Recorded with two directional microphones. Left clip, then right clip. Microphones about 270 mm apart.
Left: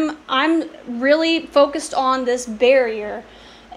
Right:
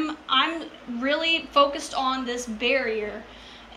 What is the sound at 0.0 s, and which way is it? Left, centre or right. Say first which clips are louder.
A woman's voice: left 4 dB; centre.